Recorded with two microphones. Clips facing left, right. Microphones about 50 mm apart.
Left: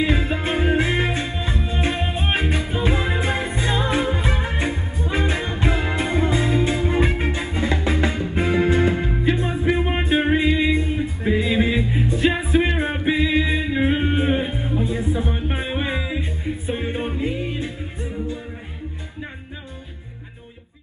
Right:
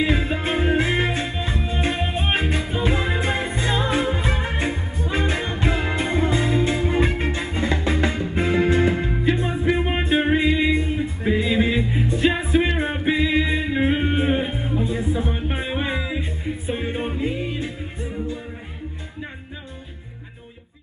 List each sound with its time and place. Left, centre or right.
0.0 s music: centre